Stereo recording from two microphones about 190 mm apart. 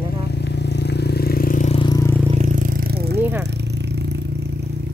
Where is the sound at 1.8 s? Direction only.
20° left (ahead or behind).